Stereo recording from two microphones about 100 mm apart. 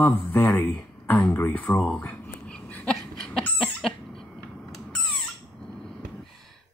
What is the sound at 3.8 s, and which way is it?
Cough, 5° left (ahead or behind).